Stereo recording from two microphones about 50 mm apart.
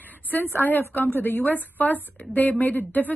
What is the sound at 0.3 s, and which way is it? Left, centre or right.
A woman's voice, left.